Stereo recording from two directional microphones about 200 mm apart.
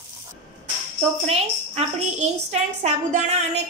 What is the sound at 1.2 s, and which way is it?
A woman's voice, 30° right (ahead or behind).